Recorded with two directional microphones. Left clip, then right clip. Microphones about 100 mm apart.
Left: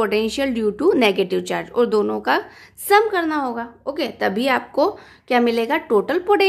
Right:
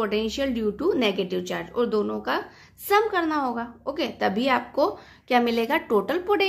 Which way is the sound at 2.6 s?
15° left (ahead or behind).